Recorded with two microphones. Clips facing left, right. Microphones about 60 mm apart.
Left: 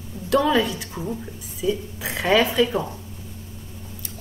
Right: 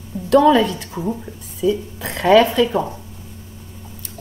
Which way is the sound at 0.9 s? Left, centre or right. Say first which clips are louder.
Right 5 dB; right.